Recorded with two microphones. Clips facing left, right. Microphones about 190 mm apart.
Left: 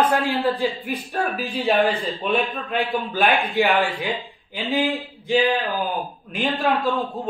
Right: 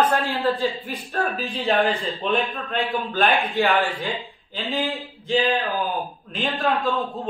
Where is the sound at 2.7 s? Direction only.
15° left (ahead or behind).